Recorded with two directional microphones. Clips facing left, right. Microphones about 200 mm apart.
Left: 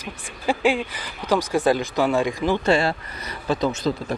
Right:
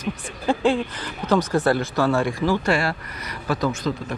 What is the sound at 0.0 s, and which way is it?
Speech, 10° left (ahead or behind).